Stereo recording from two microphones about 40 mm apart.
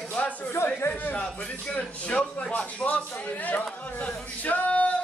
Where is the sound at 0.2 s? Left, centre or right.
Left.